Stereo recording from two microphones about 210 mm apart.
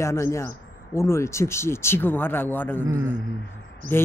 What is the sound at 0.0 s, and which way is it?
Speech, 15° left (ahead or behind).